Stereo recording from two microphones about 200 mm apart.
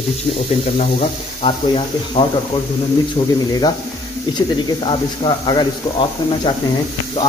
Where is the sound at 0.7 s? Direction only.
25° left (ahead or behind).